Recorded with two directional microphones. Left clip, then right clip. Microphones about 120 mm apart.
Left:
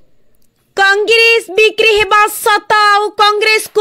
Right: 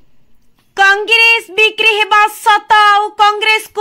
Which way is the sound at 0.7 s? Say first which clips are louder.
Even; 40° left (ahead or behind).